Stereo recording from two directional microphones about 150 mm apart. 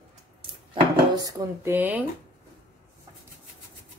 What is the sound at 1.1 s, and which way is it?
Speech, 25° right (ahead or behind).